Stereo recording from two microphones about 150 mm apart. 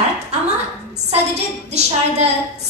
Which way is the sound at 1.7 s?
45° right (ahead or behind).